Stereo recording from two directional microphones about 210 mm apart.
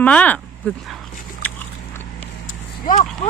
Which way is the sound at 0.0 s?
5° left (ahead or behind).